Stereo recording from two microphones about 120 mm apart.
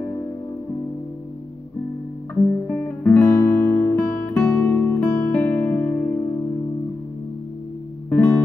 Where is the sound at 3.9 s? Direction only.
10° left (ahead or behind).